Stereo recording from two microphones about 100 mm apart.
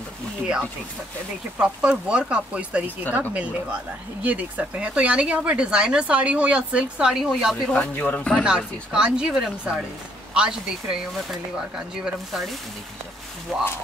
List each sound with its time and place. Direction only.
1.6 s speech: 10° right (ahead or behind)
7.7 s speech: 15° left (ahead or behind)
8.5 s speech: 10° right (ahead or behind)